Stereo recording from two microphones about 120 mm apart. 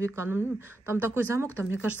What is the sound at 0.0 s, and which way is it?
Speech, 20° right (ahead or behind).